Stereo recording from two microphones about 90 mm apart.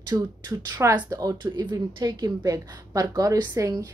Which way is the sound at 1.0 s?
40° right (ahead or behind).